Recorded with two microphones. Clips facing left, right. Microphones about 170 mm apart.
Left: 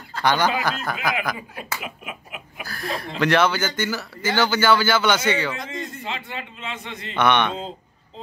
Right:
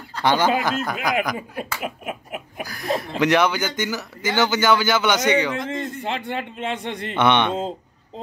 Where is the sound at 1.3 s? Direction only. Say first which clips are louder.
Right 4 dB; 40° right (ahead or behind).